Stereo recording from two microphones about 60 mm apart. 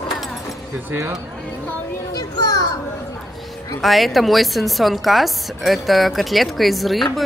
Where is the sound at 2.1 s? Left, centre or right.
Left.